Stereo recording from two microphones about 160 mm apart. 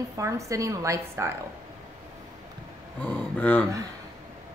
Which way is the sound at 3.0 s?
10° left (ahead or behind).